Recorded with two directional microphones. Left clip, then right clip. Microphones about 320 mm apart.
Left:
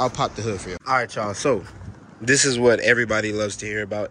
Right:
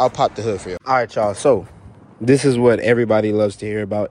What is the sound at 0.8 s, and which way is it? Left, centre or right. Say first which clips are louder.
Speech: right 5 dB; centre.